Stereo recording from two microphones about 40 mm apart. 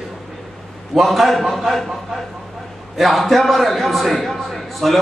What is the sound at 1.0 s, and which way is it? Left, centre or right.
Speech, centre.